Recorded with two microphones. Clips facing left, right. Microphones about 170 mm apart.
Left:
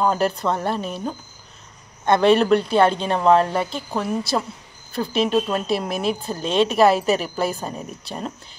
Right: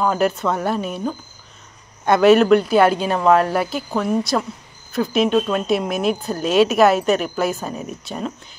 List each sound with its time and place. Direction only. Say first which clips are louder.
0.0 s speech: right 1 dB; centre (ahead or behind)
2.0 s speech: right 3 dB; 5° right (ahead or behind)